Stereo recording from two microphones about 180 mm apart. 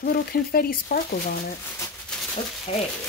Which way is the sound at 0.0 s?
55° left (ahead or behind).